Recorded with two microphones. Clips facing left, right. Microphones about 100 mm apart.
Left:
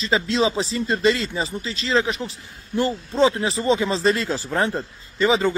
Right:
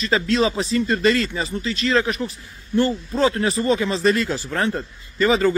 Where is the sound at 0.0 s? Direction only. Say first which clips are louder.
Right 1 dB; 25° left (ahead or behind).